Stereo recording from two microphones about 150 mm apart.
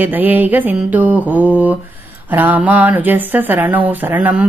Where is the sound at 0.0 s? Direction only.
10° right (ahead or behind).